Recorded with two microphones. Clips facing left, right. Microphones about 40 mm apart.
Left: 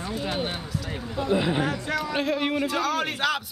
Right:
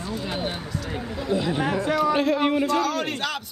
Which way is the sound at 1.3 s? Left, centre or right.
Centre.